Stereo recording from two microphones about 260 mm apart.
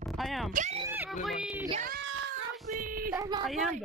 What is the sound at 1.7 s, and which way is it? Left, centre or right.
Speech, right.